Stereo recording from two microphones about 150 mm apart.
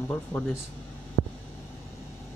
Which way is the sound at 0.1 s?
10° left (ahead or behind).